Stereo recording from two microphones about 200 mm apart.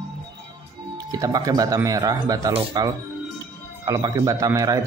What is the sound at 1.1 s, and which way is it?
Speech, 15° right (ahead or behind).